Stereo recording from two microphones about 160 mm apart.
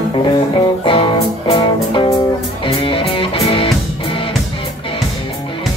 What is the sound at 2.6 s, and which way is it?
Music, 35° left (ahead or behind).